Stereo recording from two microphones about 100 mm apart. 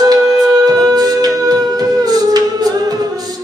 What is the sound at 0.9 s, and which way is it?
Humming, 40° right (ahead or behind).